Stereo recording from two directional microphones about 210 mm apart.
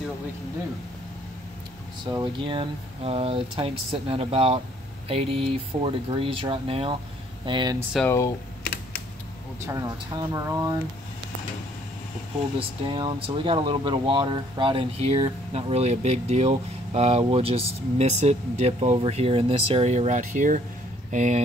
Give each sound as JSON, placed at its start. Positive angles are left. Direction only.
{"t": 2.0, "sound": "speech", "side_deg": -20}
{"t": 7.9, "sound": "speech", "side_deg": 10}
{"t": 9.7, "sound": "speech", "side_deg": -15}
{"t": 12.5, "sound": "speech", "side_deg": -25}